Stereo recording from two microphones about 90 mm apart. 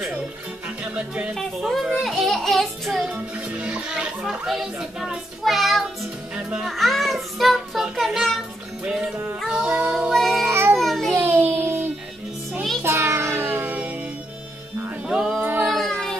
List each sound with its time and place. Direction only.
0.9 s speech: 15° right (ahead or behind)
1.3 s a child's voice: centre (ahead or behind)
3.1 s speech: 15° right (ahead or behind)
6.7 s a child's voice: centre (ahead or behind)
10.1 s child singing: centre (ahead or behind)
10.5 s a sound: 30° right (ahead or behind)
10.8 s a sound: 5° left (ahead or behind)
11.1 s child singing: 25° right (ahead or behind)
12.8 s music: 30° right (ahead or behind)
15.0 s a sound: 5° right (ahead or behind)
15.6 s child singing: centre (ahead or behind)